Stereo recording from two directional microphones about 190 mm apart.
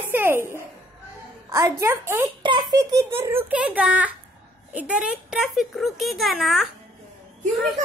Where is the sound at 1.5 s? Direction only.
15° right (ahead or behind).